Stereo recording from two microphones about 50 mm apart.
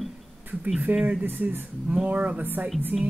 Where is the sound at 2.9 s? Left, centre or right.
Right.